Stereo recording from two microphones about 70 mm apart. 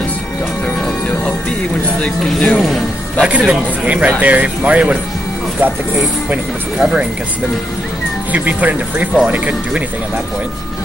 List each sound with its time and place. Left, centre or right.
2.0 s speech: centre
2.6 s a sound: centre
3.3 s speech: centre
6.8 s speech: centre
8.3 s speech: right